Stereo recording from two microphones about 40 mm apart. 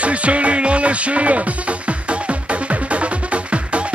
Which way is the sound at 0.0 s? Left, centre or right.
Right.